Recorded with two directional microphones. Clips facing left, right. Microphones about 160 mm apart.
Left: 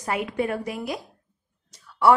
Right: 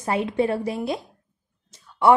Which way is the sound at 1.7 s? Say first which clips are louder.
Right 1 dB; 20° right (ahead or behind).